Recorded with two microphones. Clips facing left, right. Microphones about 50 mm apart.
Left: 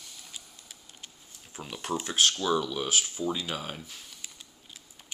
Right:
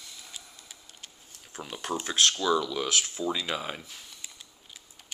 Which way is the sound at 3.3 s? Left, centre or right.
Right.